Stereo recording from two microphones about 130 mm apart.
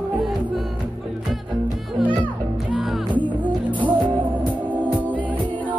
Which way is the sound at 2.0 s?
Centre (ahead or behind).